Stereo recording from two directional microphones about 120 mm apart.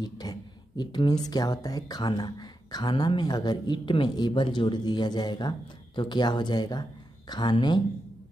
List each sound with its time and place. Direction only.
0.0 s speech: 35° left (ahead or behind)